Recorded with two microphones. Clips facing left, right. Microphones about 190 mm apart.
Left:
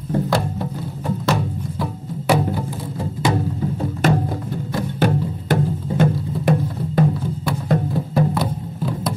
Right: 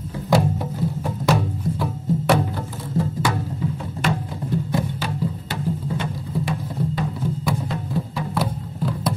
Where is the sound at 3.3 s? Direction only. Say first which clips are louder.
Left 4 dB; 40° left (ahead or behind).